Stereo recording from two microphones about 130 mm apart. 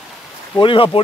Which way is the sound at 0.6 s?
40° left (ahead or behind).